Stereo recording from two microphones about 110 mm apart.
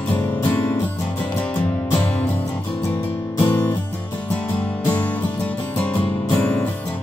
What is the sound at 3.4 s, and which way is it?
Music, 25° left (ahead or behind).